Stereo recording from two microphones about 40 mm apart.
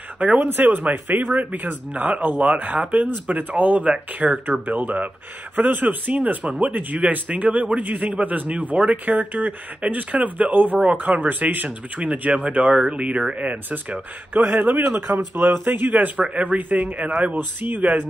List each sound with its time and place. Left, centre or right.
0.2 s speech: right
0.9 s speech: right
12.3 s speech: right
13.3 s speech: right
14.3 s speech: right
14.9 s speech: right
15.9 s speech: right